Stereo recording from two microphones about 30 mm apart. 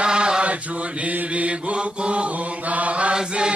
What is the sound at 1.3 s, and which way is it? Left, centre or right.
Chant, right.